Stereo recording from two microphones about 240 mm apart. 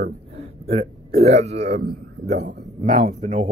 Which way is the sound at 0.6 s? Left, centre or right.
Right.